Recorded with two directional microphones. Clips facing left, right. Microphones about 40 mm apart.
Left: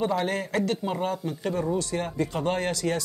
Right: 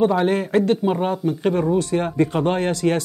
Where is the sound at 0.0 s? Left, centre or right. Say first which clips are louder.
Right 8 dB; right.